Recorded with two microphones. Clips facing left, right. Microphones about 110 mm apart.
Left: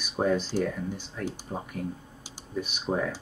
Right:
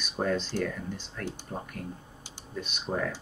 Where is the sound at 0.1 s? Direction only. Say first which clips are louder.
Left 3 dB; 15° left (ahead or behind).